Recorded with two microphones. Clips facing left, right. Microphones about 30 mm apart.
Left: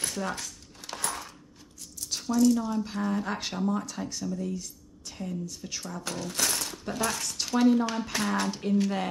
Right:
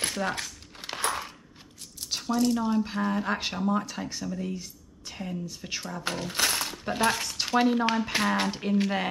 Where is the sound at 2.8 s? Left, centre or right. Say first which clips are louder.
Right 2 dB; right.